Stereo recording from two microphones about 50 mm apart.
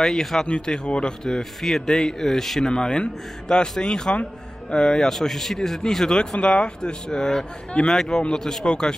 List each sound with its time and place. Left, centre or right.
0.0 s speech: centre
0.5 s speech: centre
2.6 s speech: centre